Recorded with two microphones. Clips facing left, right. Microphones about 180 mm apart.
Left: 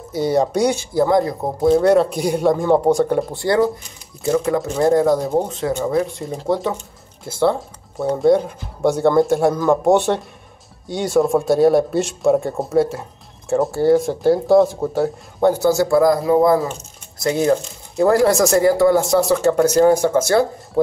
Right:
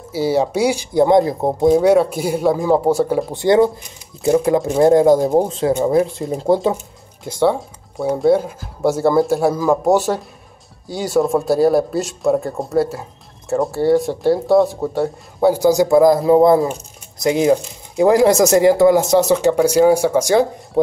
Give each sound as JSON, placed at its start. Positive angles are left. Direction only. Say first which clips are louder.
{"t": 0.1, "sound": "speech", "louder": "even", "side_deg": -5}
{"t": 0.9, "sound": "speech", "louder": "right 5 dB", "side_deg": -20}
{"t": 1.7, "sound": "speech", "louder": "even", "side_deg": -10}
{"t": 3.3, "sound": "speech", "louder": "right 7 dB", "side_deg": -20}
{"t": 7.2, "sound": "speech", "louder": "right 1 dB", "side_deg": -15}
{"t": 8.0, "sound": "speech", "louder": "even", "side_deg": -5}
{"t": 15.5, "sound": "speech", "louder": "right 3 dB", "side_deg": -15}
{"t": 17.2, "sound": "speech", "louder": "right 2 dB", "side_deg": -15}